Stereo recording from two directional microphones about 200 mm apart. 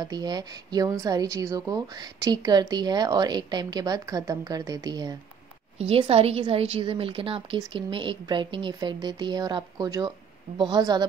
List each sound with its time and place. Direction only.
0.0 s a woman's voice: 20° right (ahead or behind)
5.8 s a woman's voice: 30° right (ahead or behind)